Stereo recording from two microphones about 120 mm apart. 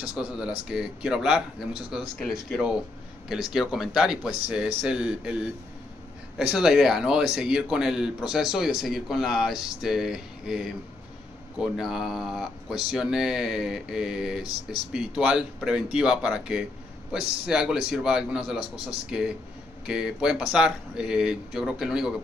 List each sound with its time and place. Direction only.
0.1 s speech: 10° right (ahead or behind)